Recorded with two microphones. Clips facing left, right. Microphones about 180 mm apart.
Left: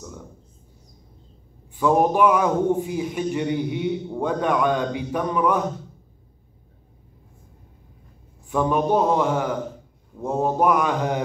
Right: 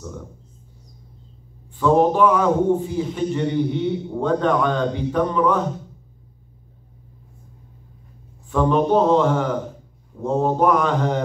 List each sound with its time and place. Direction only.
1.8 s a man's voice: 10° left (ahead or behind)
8.5 s a man's voice: 10° left (ahead or behind)